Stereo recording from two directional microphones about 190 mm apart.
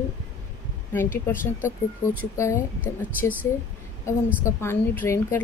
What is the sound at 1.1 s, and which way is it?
A woman's voice, 10° left (ahead or behind).